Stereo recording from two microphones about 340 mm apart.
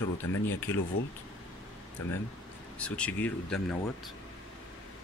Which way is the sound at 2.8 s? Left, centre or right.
Centre.